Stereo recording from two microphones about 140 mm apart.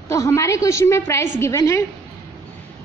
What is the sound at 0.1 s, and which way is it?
A woman's voice, 20° left (ahead or behind).